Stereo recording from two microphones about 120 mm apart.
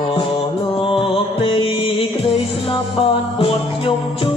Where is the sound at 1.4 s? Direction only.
50° left (ahead or behind).